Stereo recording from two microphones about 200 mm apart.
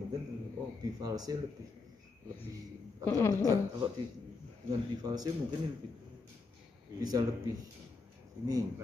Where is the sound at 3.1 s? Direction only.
15° left (ahead or behind).